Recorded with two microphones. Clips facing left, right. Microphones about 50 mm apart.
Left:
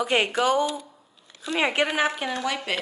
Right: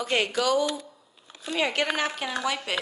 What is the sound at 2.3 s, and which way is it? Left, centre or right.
Speech, centre.